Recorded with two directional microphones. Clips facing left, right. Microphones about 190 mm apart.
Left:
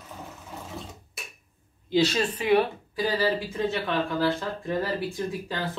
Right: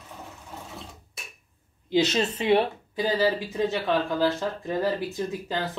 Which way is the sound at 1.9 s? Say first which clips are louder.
Even; 20° right (ahead or behind).